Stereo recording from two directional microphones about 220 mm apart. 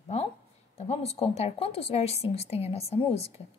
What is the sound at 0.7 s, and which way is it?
A woman's voice, 30° left (ahead or behind).